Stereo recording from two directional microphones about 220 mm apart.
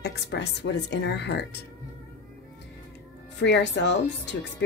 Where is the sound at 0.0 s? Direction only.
50° left (ahead or behind).